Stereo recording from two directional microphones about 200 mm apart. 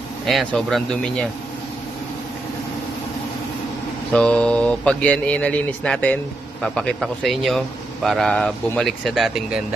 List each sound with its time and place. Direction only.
0.3 s a man's voice: centre (ahead or behind)
4.1 s a man's voice: 5° left (ahead or behind)